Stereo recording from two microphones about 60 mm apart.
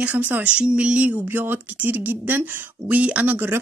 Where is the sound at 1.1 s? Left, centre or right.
Right.